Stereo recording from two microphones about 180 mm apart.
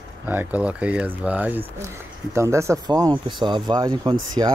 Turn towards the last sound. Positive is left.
turn(degrees=-25)  # may be behind; listen again after turning